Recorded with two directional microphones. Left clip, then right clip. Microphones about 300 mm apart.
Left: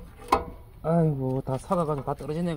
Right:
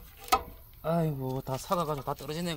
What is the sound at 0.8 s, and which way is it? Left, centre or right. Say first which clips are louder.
Speech: left 5 dB; right.